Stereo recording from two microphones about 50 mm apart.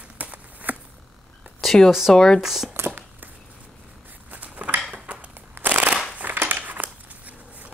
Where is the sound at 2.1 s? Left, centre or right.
Centre.